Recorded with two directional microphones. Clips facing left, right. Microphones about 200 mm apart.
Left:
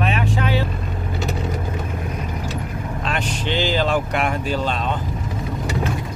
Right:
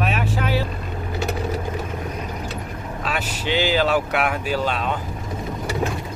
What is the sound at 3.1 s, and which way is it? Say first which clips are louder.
Speech: even; 10° right (ahead or behind).